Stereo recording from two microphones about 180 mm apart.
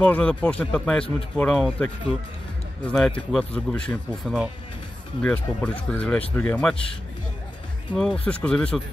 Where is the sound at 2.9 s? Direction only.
Centre (ahead or behind).